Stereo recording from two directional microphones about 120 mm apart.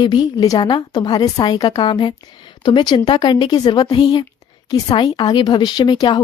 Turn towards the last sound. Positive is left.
turn(degrees=40)  # may be behind; listen again after turning